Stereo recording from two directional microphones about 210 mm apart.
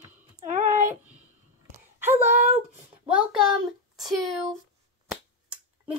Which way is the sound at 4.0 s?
Centre (ahead or behind).